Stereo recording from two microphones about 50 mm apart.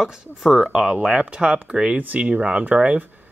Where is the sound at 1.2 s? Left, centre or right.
Right.